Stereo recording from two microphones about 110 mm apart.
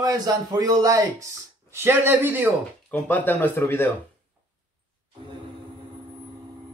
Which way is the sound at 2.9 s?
15° left (ahead or behind).